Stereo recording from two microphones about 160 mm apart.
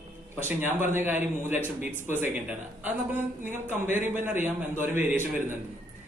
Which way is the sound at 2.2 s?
15° right (ahead or behind).